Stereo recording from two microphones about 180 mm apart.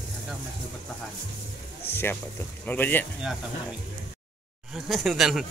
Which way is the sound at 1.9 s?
10° left (ahead or behind).